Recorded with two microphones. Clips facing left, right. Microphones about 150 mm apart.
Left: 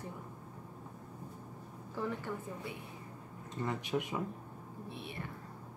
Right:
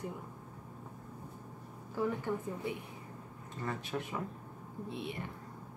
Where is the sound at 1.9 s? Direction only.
15° right (ahead or behind).